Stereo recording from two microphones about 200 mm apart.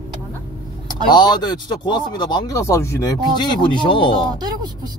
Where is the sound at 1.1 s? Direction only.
20° left (ahead or behind).